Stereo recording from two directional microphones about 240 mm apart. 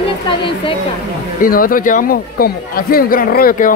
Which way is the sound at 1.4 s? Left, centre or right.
Left.